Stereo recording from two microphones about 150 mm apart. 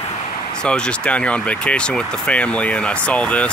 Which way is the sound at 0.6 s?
5° left (ahead or behind).